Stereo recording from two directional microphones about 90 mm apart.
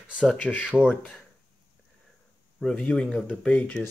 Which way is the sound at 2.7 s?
20° left (ahead or behind).